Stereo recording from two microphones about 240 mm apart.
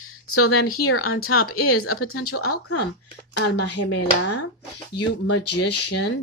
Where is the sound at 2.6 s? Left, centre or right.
Left.